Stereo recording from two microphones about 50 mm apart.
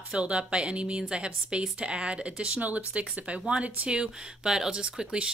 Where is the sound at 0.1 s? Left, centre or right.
Centre.